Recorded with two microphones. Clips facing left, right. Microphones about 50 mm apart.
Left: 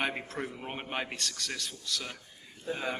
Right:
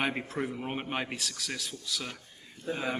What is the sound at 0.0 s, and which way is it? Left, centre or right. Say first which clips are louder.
A man's voice: right 2 dB; centre.